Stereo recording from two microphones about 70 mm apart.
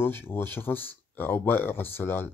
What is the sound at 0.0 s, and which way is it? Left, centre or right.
Speech, left.